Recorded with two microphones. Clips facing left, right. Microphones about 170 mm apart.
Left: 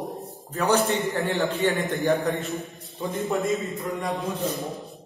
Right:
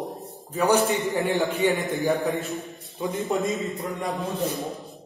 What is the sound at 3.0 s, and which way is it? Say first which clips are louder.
A man's voice: right 1 dB; 15° right (ahead or behind).